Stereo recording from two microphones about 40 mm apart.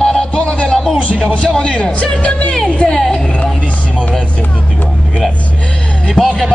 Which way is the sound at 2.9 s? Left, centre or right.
Centre.